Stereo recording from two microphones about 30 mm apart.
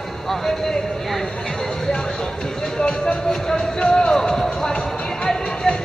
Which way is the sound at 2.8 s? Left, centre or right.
Left.